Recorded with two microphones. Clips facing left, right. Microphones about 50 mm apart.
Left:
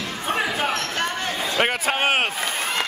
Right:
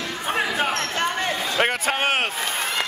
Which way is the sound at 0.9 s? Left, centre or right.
Centre.